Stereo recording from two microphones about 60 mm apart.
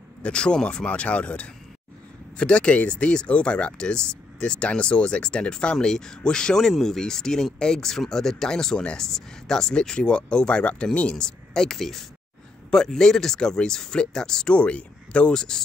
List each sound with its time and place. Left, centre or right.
0.2 s speech: centre